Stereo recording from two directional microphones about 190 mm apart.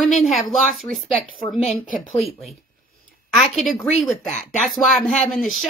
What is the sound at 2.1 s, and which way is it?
A woman's voice, centre (ahead or behind).